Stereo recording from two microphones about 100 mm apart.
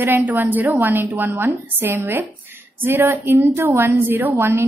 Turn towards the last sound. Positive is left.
turn(degrees=-25)  # may be behind; listen again after turning